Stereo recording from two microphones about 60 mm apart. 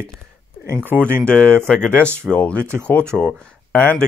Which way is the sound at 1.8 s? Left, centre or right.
Right.